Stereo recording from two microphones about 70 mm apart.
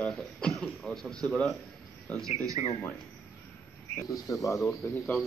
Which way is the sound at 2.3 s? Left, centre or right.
Right.